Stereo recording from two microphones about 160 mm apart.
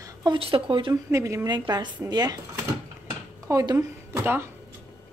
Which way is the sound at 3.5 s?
20° right (ahead or behind).